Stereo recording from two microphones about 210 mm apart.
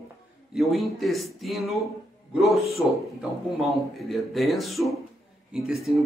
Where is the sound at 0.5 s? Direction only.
Centre (ahead or behind).